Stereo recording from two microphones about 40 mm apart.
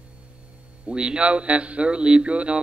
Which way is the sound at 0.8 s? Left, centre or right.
Right.